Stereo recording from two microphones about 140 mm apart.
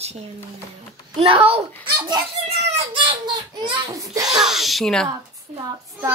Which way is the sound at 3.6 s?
35° right (ahead or behind).